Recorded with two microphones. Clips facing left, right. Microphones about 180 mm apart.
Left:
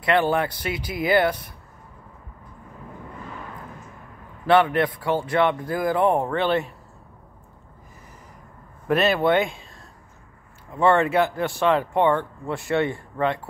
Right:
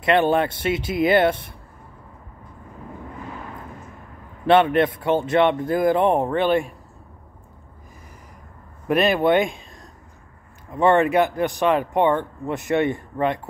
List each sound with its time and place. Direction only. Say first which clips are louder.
0.0 s speech: right 3 dB; 20° right (ahead or behind)
4.5 s speech: right 2 dB; 25° right (ahead or behind)
8.8 s speech: right 2 dB; 15° right (ahead or behind)
10.7 s speech: right 2 dB; 20° right (ahead or behind)